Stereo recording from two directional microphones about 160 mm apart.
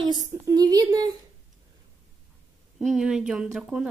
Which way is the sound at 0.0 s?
20° right (ahead or behind).